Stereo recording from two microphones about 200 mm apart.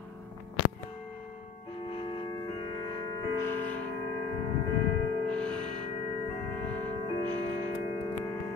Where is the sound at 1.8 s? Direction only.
25° left (ahead or behind).